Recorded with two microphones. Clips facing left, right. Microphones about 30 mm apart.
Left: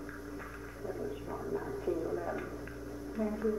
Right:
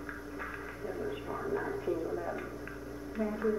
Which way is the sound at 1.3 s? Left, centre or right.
Right.